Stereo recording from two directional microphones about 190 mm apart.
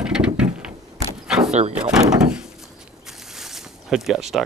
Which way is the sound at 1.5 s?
35° right (ahead or behind).